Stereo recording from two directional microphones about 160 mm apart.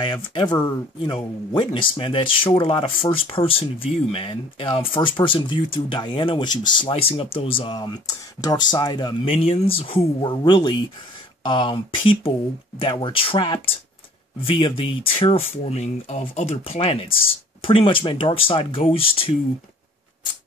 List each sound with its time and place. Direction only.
0.0 s speech: 30° left (ahead or behind)